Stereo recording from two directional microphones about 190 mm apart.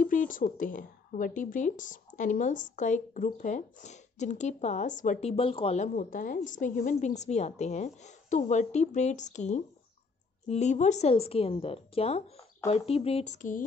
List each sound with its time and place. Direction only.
0.0 s a woman's voice: 45° left (ahead or behind)